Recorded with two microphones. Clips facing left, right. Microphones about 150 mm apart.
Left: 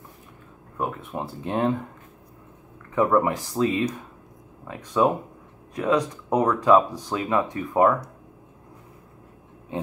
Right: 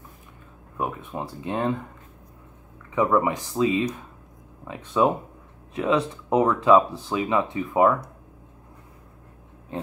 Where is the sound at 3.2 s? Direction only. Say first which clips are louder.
Even; 20° right (ahead or behind).